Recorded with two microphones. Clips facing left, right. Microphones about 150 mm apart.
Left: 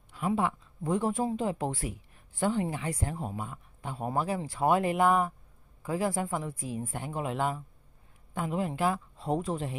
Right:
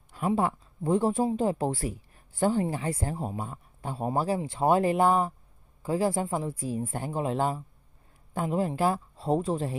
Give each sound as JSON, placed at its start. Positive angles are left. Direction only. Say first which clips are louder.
{"t": 0.4, "sound": "speech", "louder": "right 3 dB", "side_deg": -35}